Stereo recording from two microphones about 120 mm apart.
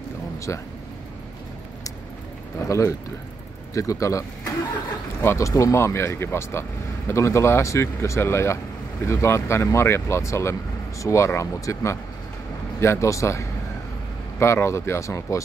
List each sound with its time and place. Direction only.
0.5 s speech: 25° left (ahead or behind)
2.6 s speech: 25° left (ahead or behind)